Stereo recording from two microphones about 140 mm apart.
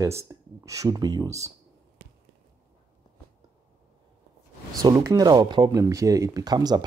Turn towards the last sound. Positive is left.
turn(degrees=-30)  # may be behind; listen again after turning